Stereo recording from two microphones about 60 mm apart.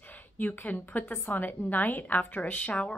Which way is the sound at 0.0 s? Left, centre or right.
Left.